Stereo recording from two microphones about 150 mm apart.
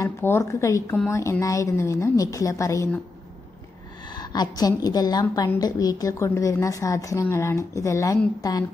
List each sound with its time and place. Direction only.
0.0 s a woman's voice: 20° left (ahead or behind)
4.1 s a woman's voice: 25° left (ahead or behind)